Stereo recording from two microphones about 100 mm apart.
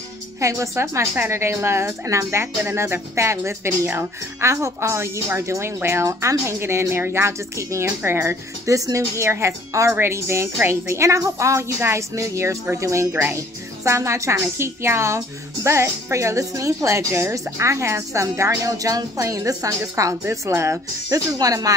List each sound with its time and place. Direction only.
0.4 s a woman's voice: 30° right (ahead or behind)